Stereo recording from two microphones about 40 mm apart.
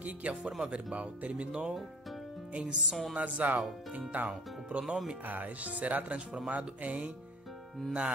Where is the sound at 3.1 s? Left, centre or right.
Right.